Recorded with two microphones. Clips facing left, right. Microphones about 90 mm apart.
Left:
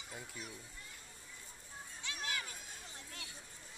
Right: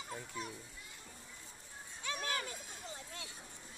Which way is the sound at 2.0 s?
45° right (ahead or behind).